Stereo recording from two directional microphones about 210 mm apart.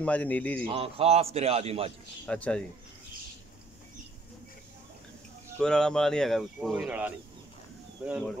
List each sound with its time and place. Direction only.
0.0 s a man's voice: 5° left (ahead or behind)
0.7 s a man's voice: 25° right (ahead or behind)
2.2 s speech: 5° left (ahead or behind)
5.6 s speech: 5° left (ahead or behind)